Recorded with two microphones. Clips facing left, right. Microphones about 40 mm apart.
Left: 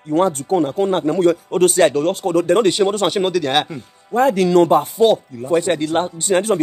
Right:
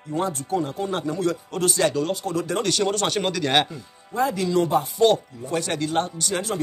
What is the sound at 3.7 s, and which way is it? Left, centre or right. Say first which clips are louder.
Speech: left 9 dB; left.